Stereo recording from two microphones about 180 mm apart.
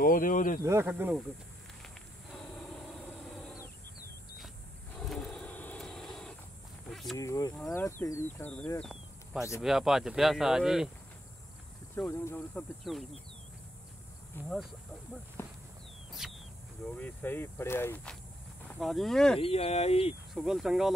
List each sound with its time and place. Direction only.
0.0 s speech: 50° left (ahead or behind)
0.7 s speech: 15° right (ahead or behind)
5.0 s vehicle: centre (ahead or behind)
6.9 s a sound: centre (ahead or behind)
7.2 s speech: 20° left (ahead or behind); by 10.9 s centre (ahead or behind)
12.1 s speech: 15° left (ahead or behind)
12.9 s speech: centre (ahead or behind)
14.3 s speech: 10° left (ahead or behind)
15.4 s walk: 15° left (ahead or behind)
16.1 s a sound: centre (ahead or behind)
16.8 s speech: 10° left (ahead or behind)
18.8 s speech: centre (ahead or behind)
19.4 s speech: 35° left (ahead or behind)
20.3 s speech: 5° right (ahead or behind)